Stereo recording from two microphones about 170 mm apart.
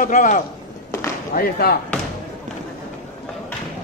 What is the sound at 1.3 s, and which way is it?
Speech, 65° left (ahead or behind).